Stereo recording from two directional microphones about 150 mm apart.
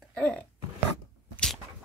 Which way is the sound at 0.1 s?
5° left (ahead or behind).